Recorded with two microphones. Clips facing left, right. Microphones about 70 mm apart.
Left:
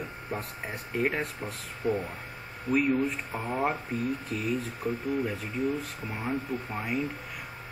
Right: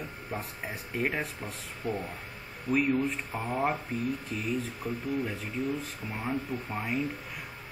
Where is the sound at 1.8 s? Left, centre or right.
Centre.